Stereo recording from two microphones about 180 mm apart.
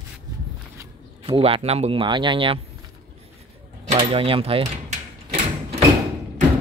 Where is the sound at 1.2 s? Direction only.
30° right (ahead or behind).